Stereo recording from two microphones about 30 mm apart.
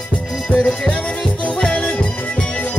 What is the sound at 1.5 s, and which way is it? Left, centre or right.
Music, left.